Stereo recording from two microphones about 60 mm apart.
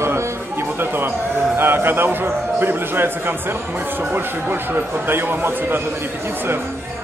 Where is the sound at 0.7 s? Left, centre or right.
Right.